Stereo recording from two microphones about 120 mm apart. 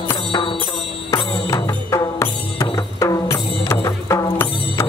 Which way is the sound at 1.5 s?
25° left (ahead or behind).